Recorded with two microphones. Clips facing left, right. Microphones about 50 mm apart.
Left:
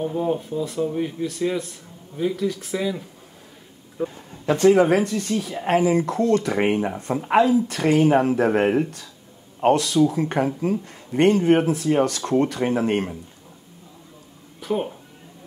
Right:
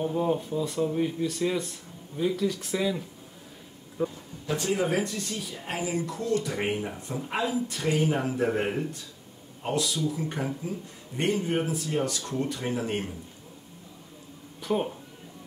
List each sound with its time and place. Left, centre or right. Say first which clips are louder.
0.0 s speech: left 3 dB; centre
4.0 s speech: left 2 dB; centre
4.5 s speech: left 11 dB; left
14.6 s a sound: left 3 dB; centre